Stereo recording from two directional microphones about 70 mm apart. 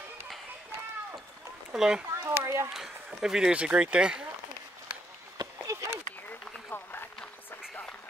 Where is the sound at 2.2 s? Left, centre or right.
Right.